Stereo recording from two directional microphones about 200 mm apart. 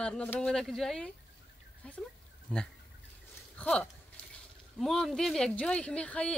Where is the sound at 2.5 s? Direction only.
5° left (ahead or behind).